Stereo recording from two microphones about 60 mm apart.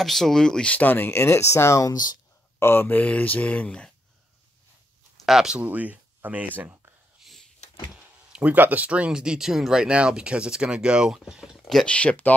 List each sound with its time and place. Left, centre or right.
0.0 s speech: centre
0.7 s speech: left
2.6 s speech: left
3.0 s speech: left
5.2 s speech: centre
5.6 s speech: right
7.2 s a sound: centre
7.9 s a sound: centre
8.5 s speech: right; by 11.8 s centre
11.8 s speech: centre